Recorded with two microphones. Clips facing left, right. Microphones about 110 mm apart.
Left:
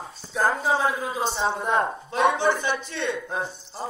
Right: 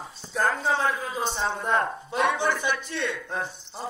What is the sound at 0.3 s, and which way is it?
A man's voice, 5° left (ahead or behind).